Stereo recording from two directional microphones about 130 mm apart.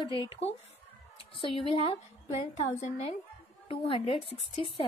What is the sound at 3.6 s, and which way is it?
A woman's voice, 50° left (ahead or behind).